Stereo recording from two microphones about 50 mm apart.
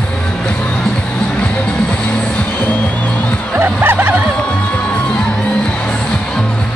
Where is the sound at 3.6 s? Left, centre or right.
Right.